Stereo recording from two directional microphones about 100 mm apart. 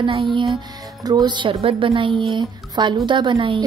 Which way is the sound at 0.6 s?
45° right (ahead or behind).